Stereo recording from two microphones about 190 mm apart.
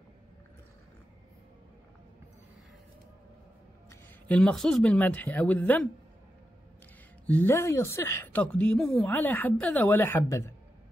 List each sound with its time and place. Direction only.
4.3 s speech: centre (ahead or behind)
7.2 s speech: 10° left (ahead or behind)